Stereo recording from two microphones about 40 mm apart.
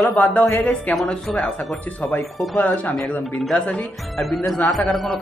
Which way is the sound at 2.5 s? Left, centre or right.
Left.